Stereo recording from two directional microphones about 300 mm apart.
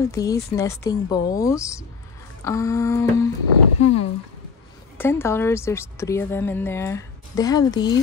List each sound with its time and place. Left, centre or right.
0.0 s a woman's voice: centre
3.8 s speech: left
4.9 s a woman's voice: centre